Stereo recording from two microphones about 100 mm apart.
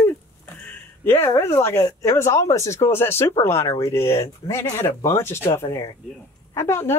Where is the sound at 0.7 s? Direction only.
20° left (ahead or behind).